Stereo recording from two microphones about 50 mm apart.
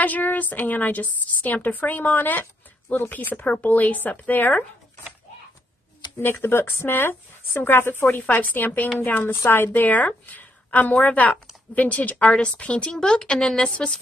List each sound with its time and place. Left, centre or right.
0.0 s a woman's voice: left
6.1 s speech: left
8.0 s a woman's voice: left
9.2 s a woman's voice: left
12.9 s speech: centre